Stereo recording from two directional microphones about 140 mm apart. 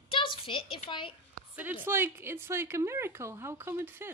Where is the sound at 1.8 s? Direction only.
15° right (ahead or behind).